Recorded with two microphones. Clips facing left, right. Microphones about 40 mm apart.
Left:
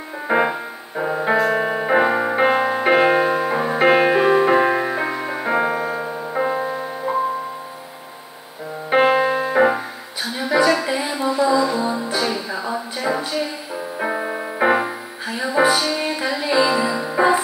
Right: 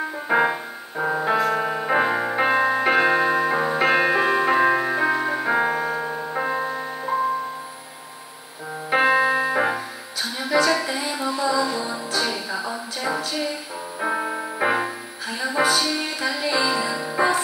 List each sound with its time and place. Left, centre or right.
0.3 s music: centre
3.3 s music: centre
4.2 s music: centre
8.9 s music: centre